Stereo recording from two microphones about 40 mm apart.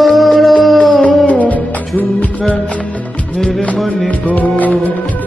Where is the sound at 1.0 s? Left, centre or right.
Left.